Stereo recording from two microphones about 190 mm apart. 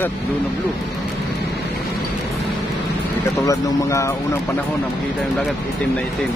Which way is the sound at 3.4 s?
15° left (ahead or behind).